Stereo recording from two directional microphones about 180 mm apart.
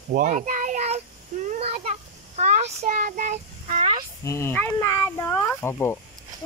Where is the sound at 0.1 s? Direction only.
45° right (ahead or behind).